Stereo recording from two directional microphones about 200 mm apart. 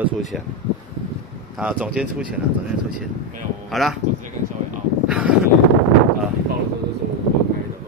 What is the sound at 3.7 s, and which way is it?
Speech, centre (ahead or behind).